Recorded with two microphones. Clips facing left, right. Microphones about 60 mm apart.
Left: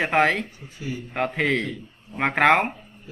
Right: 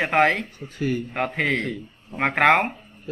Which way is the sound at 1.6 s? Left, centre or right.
Right.